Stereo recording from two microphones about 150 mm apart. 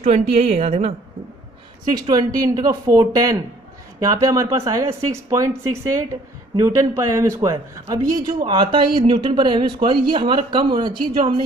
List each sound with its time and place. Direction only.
0.0 s speech: 45° right (ahead or behind)
2.0 s speech: 25° right (ahead or behind)
6.6 s a man's voice: 20° right (ahead or behind)